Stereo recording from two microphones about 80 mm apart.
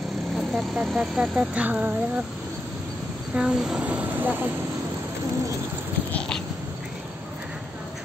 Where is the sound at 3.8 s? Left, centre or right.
Centre.